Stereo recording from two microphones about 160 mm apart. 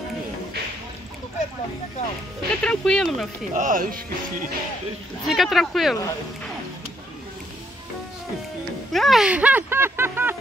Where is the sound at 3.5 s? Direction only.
55° right (ahead or behind).